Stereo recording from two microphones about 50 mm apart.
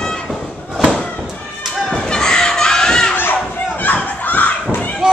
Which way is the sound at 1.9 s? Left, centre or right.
Centre.